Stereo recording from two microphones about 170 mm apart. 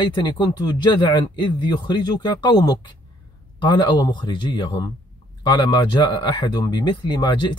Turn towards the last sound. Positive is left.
turn(degrees=25)  # may be behind; listen again after turning